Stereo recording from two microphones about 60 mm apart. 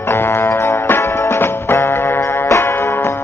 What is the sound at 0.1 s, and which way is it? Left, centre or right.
Music, left.